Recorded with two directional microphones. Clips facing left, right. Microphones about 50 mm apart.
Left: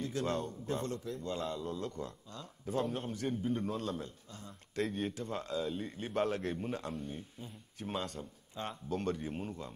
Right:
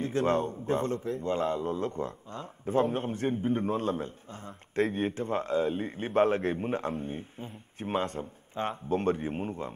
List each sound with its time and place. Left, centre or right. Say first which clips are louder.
0.0 s a man's voice: right 8 dB; right